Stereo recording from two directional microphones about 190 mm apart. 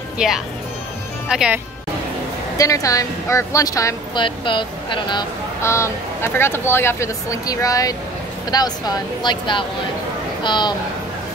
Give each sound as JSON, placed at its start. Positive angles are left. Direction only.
{"t": 0.2, "sound": "speech", "side_deg": -5}
{"t": 2.5, "sound": "a woman's voice", "side_deg": 15}
{"t": 5.6, "sound": "a woman's voice", "side_deg": 15}